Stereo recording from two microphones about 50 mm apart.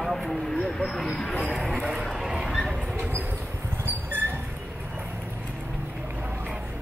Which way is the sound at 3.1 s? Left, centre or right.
Right.